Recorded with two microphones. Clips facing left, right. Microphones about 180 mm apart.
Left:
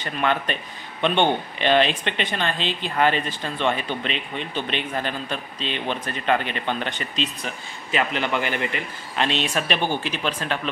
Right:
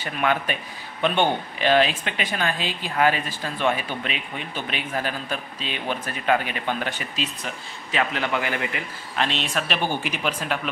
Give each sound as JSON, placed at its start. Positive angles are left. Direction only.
{"t": 0.0, "sound": "speech", "side_deg": -10}
{"t": 10.0, "sound": "speech", "side_deg": -10}